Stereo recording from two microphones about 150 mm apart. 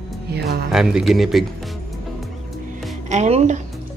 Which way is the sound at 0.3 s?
90° right.